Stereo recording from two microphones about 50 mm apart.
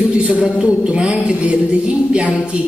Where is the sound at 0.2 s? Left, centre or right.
Centre.